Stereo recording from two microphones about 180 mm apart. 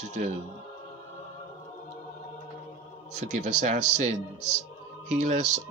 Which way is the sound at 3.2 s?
40° right (ahead or behind).